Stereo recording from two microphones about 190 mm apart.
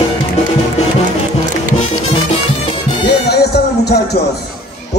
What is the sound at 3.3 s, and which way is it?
Music, 60° left (ahead or behind).